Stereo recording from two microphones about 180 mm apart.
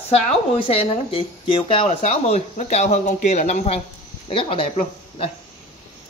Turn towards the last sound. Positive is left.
turn(degrees=30)  # may be behind; listen again after turning